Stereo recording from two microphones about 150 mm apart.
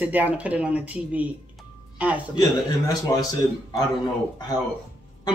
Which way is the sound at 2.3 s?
25° left (ahead or behind).